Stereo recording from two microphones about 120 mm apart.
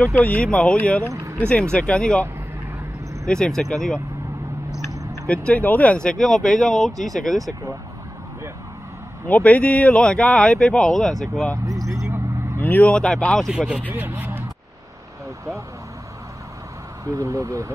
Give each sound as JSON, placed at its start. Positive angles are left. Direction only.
{"t": 0.0, "sound": "speech", "side_deg": 10}
{"t": 1.1, "sound": "speech", "side_deg": -25}
{"t": 1.5, "sound": "speech", "side_deg": 10}
{"t": 3.3, "sound": "speech", "side_deg": 5}
{"t": 5.3, "sound": "speech", "side_deg": 10}
{"t": 9.3, "sound": "speech", "side_deg": 10}
{"t": 11.5, "sound": "a sound", "side_deg": -30}
{"t": 12.5, "sound": "speech", "side_deg": 15}
{"t": 13.5, "sound": "speech", "side_deg": -5}
{"t": 17.0, "sound": "speech", "side_deg": -25}